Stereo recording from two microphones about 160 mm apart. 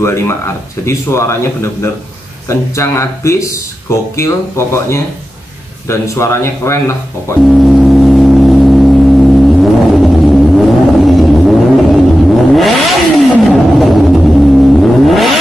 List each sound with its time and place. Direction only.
0.0 s speech: 15° left (ahead or behind)
7.4 s gong: centre (ahead or behind)
12.5 s vehicle: centre (ahead or behind)